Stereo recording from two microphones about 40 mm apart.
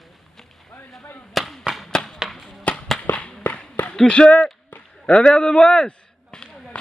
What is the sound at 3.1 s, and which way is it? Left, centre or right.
Whip, left.